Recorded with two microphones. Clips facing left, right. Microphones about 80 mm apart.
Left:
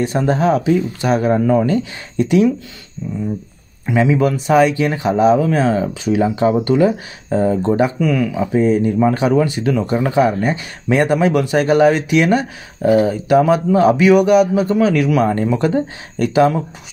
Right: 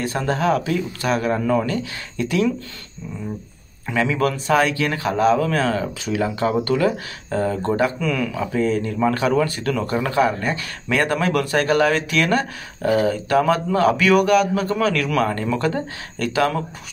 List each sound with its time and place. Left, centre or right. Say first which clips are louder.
0.0 s speech: left 5 dB; left
3.8 s speech: left 5 dB; left